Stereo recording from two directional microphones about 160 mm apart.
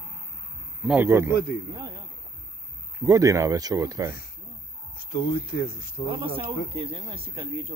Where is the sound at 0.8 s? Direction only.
10° right (ahead or behind).